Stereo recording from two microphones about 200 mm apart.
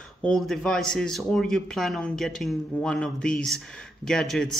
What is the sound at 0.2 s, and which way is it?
Speech, centre (ahead or behind).